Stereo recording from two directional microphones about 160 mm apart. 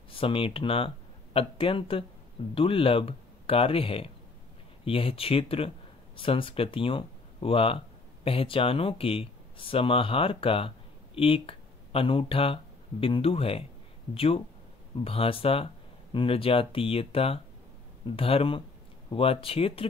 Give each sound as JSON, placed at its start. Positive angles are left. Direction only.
{"t": 0.1, "sound": "speech", "side_deg": 35}